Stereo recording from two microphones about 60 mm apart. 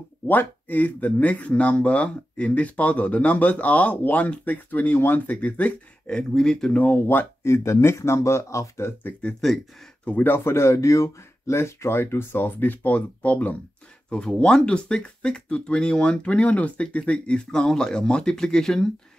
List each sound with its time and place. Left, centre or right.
0.3 s speech: left
6.0 s speech: centre
6.8 s speech: left
9.2 s speech: left
10.3 s speech: left; by 18.9 s centre